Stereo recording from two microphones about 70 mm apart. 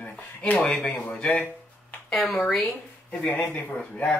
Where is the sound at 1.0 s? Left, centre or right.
Centre.